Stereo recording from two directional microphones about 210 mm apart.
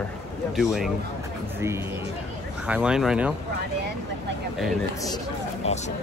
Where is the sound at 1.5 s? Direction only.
10° right (ahead or behind).